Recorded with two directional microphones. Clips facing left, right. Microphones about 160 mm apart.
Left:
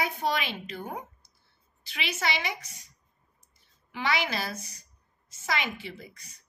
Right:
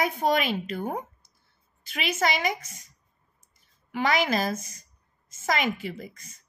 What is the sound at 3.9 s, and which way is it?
A woman's voice, 45° right (ahead or behind).